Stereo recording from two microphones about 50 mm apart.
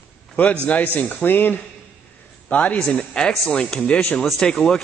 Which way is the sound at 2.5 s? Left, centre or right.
Left.